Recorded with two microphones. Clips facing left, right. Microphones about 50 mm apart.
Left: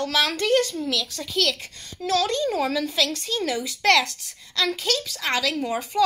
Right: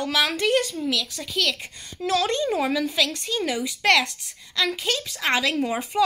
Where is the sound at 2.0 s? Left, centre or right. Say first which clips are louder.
Even; right.